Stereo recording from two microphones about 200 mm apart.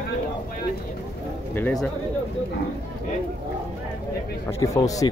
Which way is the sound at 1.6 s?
10° left (ahead or behind).